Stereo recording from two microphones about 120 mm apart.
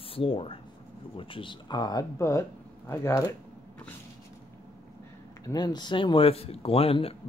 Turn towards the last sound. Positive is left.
turn(degrees=55)  # may be behind; listen again after turning